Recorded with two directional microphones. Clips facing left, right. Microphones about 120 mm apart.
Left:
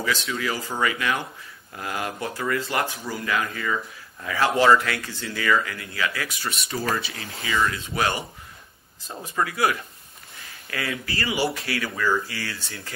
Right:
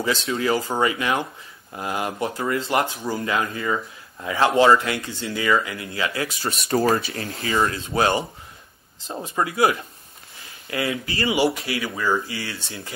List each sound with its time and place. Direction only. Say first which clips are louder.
0.0 s speech: right 4 dB; 30° right (ahead or behind)
6.7 s speech: right 10 dB; 50° right (ahead or behind)
7.5 s speech: right 3 dB; 30° right (ahead or behind)